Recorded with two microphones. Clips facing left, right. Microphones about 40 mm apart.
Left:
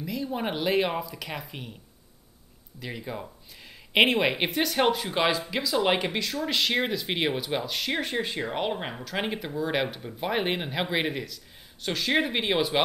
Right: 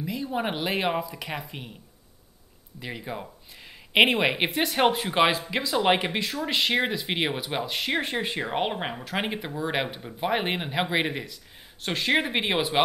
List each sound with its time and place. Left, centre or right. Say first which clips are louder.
0.0 s speech: right 1 dB; centre
2.8 s speech: right 1 dB; centre
11.1 s speech: even; right